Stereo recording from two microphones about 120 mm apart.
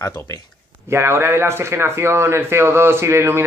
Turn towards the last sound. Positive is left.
turn(degrees=-20)  # may be behind; listen again after turning